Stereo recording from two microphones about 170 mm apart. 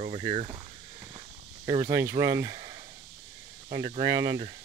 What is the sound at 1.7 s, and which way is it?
Speech, 20° right (ahead or behind).